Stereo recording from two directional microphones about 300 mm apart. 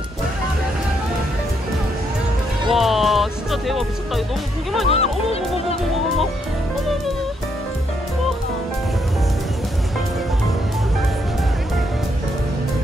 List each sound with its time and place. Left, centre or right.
2.7 s speech: centre
4.8 s music: centre